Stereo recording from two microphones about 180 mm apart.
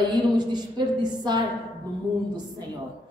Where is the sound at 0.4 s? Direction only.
25° right (ahead or behind).